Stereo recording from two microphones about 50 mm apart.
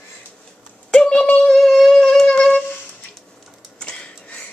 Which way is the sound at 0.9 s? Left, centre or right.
Centre.